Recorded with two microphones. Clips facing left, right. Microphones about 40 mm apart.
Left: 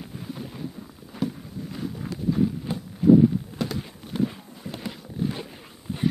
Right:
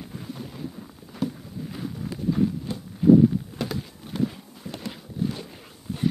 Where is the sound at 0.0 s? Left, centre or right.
Centre.